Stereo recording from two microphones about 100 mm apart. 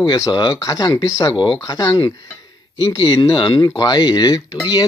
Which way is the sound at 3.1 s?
55° left (ahead or behind).